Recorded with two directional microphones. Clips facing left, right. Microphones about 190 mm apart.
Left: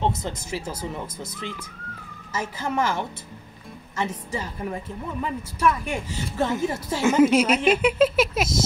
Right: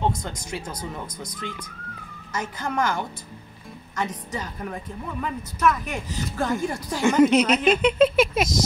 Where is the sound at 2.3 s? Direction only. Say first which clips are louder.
Left 1 dB; 5° left (ahead or behind).